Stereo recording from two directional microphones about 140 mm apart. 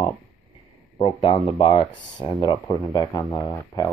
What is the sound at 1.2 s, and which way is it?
Speech, 40° left (ahead or behind).